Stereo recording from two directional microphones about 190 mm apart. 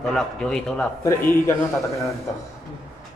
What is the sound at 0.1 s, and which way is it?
A man's voice, 5° left (ahead or behind).